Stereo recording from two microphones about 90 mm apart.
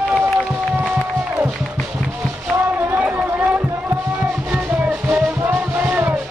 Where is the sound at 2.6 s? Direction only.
25° right (ahead or behind).